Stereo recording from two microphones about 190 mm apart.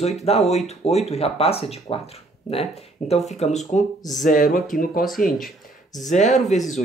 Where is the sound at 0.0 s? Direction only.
35° left (ahead or behind).